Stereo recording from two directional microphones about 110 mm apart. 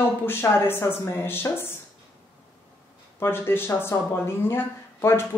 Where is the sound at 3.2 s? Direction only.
20° left (ahead or behind).